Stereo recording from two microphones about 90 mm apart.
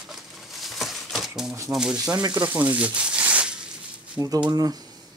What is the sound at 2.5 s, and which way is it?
Speech, 15° right (ahead or behind).